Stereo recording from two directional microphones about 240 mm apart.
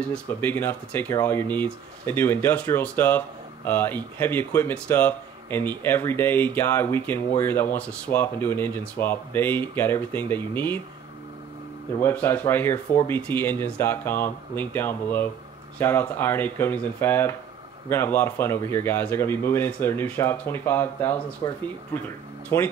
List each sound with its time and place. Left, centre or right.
0.0 s speech: centre
12.0 s speech: centre